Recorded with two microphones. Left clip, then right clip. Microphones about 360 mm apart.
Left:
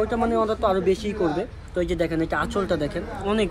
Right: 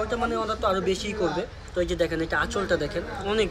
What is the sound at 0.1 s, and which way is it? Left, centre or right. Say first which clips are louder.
Speech: left 4 dB; centre.